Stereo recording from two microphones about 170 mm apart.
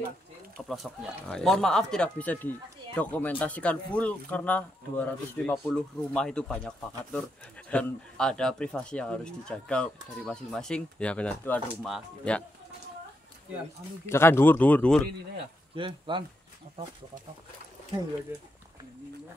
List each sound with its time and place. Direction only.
0.6 s speech: centre (ahead or behind)
14.0 s speech: 15° left (ahead or behind)
15.7 s speech: 30° right (ahead or behind)